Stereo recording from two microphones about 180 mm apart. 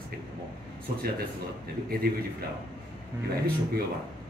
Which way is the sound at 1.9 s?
60° right (ahead or behind).